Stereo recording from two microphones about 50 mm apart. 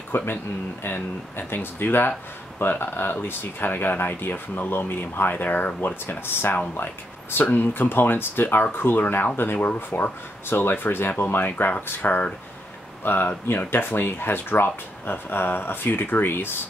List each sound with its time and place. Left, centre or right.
0.1 s speech: left